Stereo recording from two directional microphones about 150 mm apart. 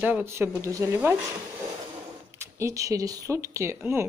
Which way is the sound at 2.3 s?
20° right (ahead or behind).